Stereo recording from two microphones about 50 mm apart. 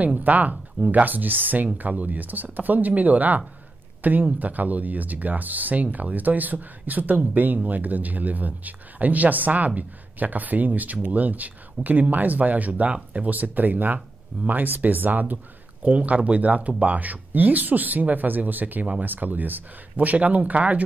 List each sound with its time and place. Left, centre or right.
0.0 s speech: right
1.0 s speech: right